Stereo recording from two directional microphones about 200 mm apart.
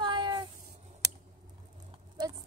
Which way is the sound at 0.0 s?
25° right (ahead or behind).